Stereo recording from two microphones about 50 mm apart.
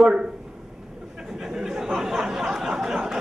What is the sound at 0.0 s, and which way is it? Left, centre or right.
Speech, centre.